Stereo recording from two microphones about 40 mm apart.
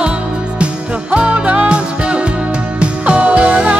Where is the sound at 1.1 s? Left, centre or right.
Right.